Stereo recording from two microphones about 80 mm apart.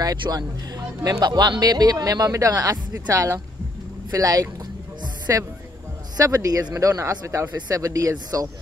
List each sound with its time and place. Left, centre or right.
0.3 s speech: right